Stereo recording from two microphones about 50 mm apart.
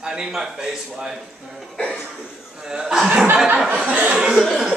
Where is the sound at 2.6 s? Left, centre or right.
Centre.